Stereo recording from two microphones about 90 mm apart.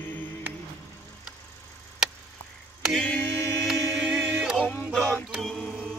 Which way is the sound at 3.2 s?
30° left (ahead or behind).